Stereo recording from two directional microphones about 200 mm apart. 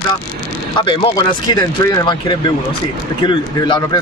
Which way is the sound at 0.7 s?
25° left (ahead or behind).